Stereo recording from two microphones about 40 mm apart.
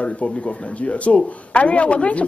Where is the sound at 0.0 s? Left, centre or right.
Left.